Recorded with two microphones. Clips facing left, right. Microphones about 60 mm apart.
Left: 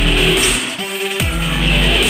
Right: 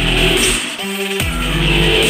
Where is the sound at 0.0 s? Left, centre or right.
Centre.